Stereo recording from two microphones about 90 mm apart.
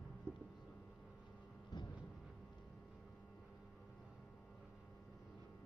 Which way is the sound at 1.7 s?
45° left (ahead or behind).